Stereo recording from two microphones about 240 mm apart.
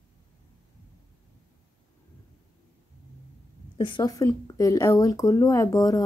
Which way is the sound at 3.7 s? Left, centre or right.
Centre.